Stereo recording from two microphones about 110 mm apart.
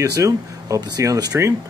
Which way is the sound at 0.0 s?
30° right (ahead or behind).